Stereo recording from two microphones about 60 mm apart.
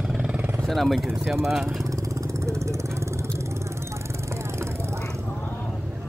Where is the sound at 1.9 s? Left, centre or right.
Right.